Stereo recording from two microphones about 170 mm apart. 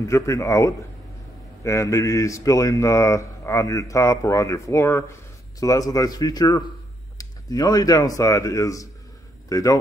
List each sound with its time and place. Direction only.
0.0 s a man's voice: 20° left (ahead or behind)